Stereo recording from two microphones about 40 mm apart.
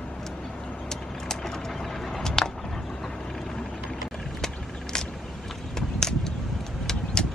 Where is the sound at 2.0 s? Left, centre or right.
Centre.